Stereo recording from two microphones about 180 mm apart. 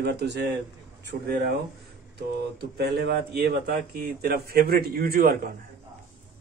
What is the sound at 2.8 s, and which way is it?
A man's voice, 65° right (ahead or behind).